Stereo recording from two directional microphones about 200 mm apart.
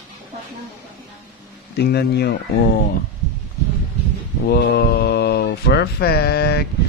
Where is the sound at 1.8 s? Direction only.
55° left (ahead or behind).